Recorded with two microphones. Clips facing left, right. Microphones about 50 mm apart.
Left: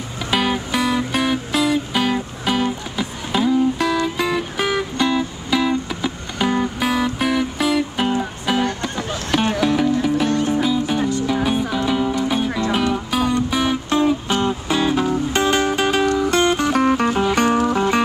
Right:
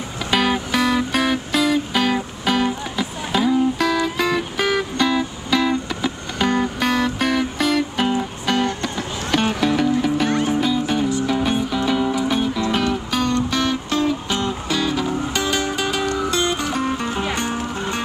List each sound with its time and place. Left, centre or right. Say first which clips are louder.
0.3 s music: right 1 dB; centre; by 18.0 s left